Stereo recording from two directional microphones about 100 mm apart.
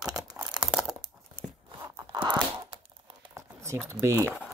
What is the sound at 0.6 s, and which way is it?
Crumpling, 5° right (ahead or behind).